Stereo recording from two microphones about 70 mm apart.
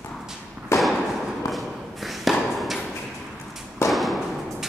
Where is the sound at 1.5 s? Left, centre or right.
Centre.